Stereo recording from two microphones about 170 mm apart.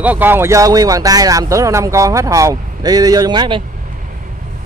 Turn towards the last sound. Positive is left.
turn(degrees=-25)  # may be behind; listen again after turning